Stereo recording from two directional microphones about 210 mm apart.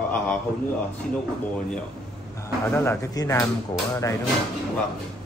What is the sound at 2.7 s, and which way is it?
Speech, 15° left (ahead or behind).